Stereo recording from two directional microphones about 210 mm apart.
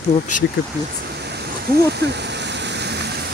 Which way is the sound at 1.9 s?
55° right (ahead or behind).